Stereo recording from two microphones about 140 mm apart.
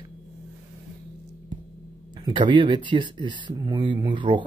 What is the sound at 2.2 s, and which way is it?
Speech, 35° right (ahead or behind).